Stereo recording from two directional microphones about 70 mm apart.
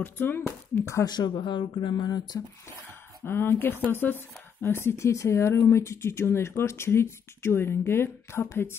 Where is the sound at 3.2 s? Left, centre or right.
Left.